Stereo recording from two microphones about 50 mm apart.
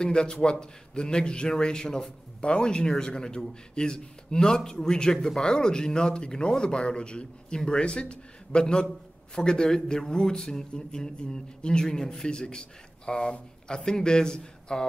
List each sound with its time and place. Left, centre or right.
0.0 s a man's voice: centre